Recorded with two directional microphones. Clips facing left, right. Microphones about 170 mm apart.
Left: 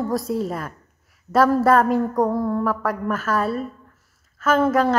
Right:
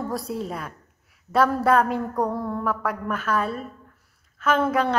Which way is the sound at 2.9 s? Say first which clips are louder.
Left 3 dB; 40° left (ahead or behind).